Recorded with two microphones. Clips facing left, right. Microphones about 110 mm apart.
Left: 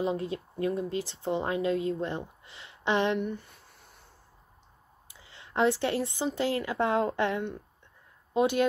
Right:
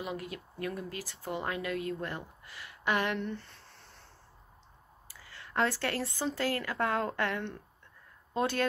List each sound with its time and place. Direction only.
0.0 s speech: 30° left (ahead or behind)
3.2 s a sound: 10° left (ahead or behind)
5.0 s speech: 20° left (ahead or behind)